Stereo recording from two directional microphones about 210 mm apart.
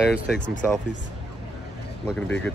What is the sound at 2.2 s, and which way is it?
Speech, 5° left (ahead or behind).